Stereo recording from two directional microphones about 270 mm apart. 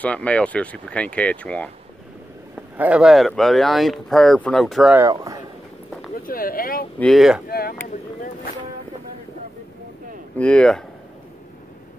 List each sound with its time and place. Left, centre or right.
0.0 s speech: centre
2.8 s speech: centre
6.1 s a sound: left
7.0 s speech: centre
7.4 s speech: left
10.3 s speech: centre